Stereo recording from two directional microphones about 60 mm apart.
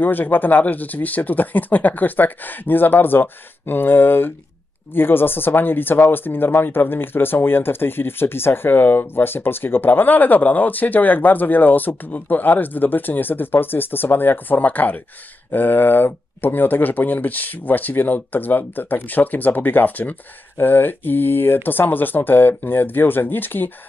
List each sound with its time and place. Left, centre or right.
0.0 s speech: left